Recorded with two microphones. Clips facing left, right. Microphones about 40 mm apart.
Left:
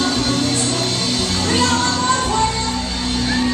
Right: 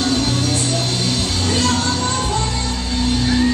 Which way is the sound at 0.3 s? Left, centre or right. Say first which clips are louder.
Left 1 dB; left.